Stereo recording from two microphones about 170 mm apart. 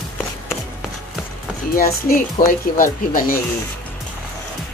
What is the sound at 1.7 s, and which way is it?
A child's voice, 60° left (ahead or behind).